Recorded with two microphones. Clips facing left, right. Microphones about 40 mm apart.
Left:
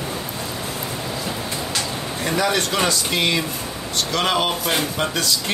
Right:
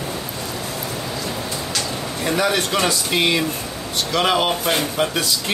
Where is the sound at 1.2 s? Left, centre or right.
Centre.